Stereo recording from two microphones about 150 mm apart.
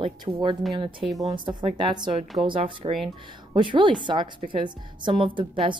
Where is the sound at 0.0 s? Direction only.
35° right (ahead or behind).